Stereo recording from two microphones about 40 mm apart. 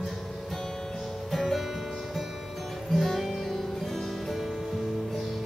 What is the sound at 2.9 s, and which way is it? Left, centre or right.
Music, centre.